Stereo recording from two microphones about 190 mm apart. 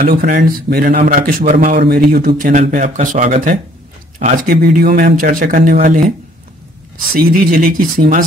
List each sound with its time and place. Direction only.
0.0 s speech: 50° right (ahead or behind)
1.8 s speech: 55° right (ahead or behind)
7.2 s speech: 50° right (ahead or behind)